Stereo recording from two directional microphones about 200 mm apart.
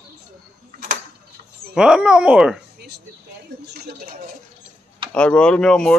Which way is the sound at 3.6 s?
55° right (ahead or behind).